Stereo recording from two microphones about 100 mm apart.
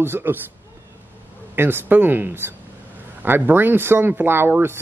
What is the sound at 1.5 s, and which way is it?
Speech, 20° right (ahead or behind).